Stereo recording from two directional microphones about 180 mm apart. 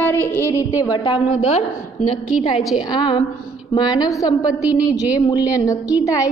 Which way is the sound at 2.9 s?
25° left (ahead or behind).